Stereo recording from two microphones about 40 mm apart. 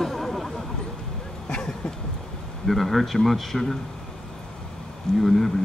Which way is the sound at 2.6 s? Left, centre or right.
Centre.